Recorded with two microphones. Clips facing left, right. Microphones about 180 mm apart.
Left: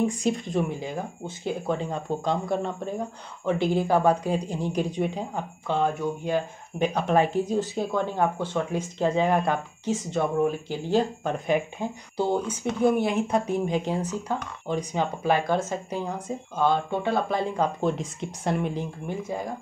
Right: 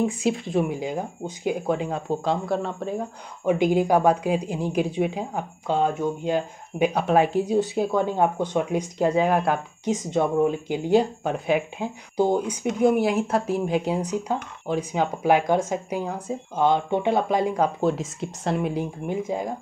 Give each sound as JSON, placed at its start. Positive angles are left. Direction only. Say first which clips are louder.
{"t": 0.0, "sound": "speech", "louder": "right 1 dB", "side_deg": -5}
{"t": 3.4, "sound": "speech", "louder": "right 4 dB", "side_deg": -15}
{"t": 10.0, "sound": "speech", "louder": "right 3 dB", "side_deg": -20}